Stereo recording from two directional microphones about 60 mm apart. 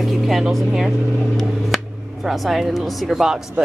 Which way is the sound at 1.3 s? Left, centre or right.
Centre.